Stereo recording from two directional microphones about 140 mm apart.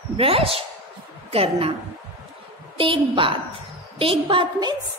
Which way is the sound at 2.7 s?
40° right (ahead or behind).